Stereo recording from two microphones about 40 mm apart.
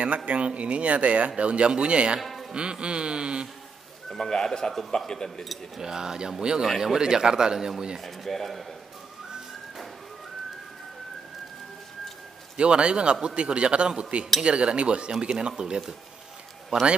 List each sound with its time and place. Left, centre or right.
0.0 s speech: right
4.1 s speech: centre
5.8 s speech: centre
8.0 s speech: centre
12.5 s speech: right